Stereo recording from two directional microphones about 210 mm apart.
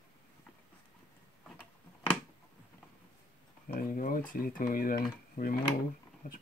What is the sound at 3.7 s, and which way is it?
Speech, 40° left (ahead or behind).